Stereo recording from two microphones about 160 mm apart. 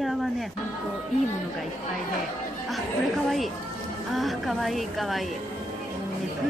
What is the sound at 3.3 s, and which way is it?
A woman's voice, centre (ahead or behind).